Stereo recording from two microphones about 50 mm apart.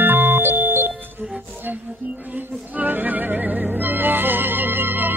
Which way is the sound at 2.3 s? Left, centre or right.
Right.